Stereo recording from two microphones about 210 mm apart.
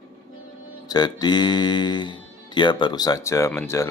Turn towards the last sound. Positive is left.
turn(degrees=10)  # may be behind; listen again after turning